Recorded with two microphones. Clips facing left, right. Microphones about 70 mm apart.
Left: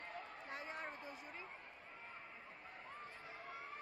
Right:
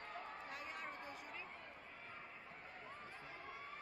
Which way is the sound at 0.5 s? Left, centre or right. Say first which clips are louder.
Left 2 dB; left.